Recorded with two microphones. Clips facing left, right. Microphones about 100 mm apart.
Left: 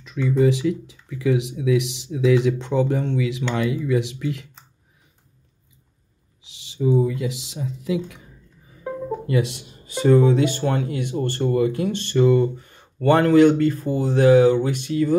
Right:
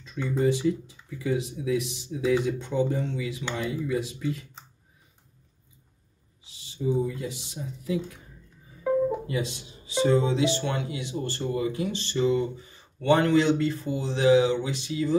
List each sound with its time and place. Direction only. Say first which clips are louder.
0.0 s speech: left 6 dB; 90° left
6.4 s speech: left 6 dB; 90° left
9.2 s speech: left 7 dB; 65° left (ahead or behind)